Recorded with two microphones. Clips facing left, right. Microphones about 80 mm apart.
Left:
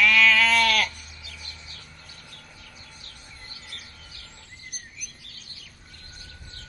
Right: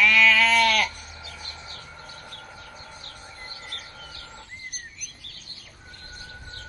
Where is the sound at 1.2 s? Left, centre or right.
Right.